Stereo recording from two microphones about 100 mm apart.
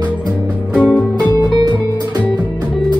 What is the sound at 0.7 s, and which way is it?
Music, 15° left (ahead or behind).